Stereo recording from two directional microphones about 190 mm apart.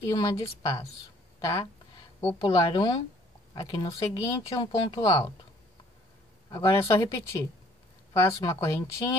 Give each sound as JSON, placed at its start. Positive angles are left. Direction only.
{"t": 0.1, "sound": "speech", "side_deg": 20}
{"t": 6.5, "sound": "speech", "side_deg": 15}
{"t": 8.1, "sound": "speech", "side_deg": 15}